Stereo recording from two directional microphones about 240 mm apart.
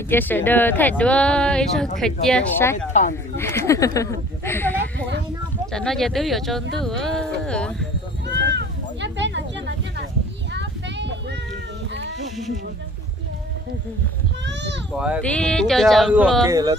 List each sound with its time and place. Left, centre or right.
0.1 s speech: centre
2.9 s speech: left
3.3 s speech: centre
8.3 s a sound: right
14.4 s a sound: right
15.0 s speech: centre
16.4 s speech: centre